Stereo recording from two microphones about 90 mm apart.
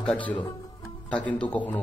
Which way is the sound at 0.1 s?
15° left (ahead or behind).